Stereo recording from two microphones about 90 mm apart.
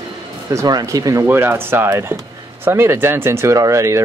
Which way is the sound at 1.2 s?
25° right (ahead or behind).